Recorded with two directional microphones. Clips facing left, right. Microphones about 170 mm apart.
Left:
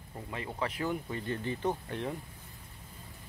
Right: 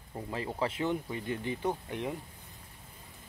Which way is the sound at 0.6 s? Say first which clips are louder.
Right 2 dB; 25° right (ahead or behind).